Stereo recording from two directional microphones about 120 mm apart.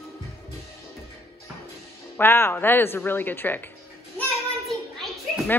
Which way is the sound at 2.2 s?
20° left (ahead or behind).